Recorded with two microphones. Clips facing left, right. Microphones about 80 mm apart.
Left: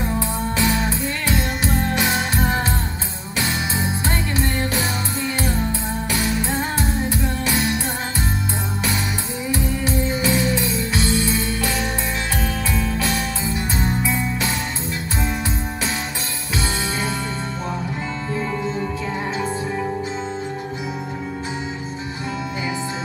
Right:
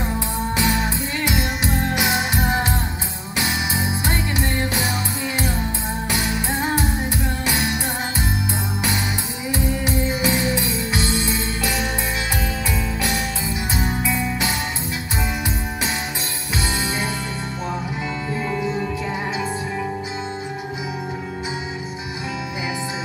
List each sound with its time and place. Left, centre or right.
0.6 s music: centre
6.0 s music: centre
9.5 s music: right
18.6 s music: centre